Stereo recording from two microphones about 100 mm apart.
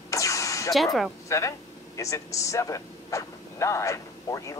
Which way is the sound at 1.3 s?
30° left (ahead or behind).